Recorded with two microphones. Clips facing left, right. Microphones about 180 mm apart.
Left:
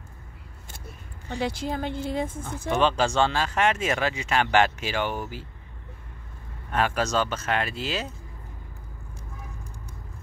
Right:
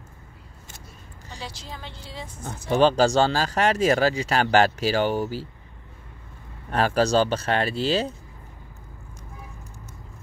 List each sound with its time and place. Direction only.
1.3 s speech: 55° left (ahead or behind)
2.7 s speech: 35° right (ahead or behind)
6.7 s speech: 35° right (ahead or behind)